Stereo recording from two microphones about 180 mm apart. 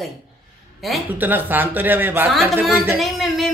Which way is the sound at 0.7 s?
Centre (ahead or behind).